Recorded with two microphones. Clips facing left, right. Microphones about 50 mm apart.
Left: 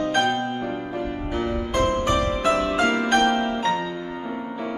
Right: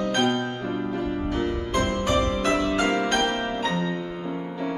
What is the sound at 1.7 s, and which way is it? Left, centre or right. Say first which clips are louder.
Music: left 3 dB; centre.